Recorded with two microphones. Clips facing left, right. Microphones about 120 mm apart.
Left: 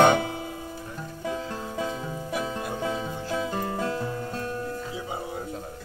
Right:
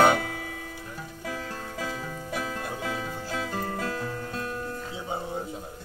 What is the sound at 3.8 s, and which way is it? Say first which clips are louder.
Music: left 3 dB; 25° left (ahead or behind).